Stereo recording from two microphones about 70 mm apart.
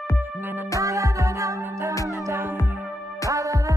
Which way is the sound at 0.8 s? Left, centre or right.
Right.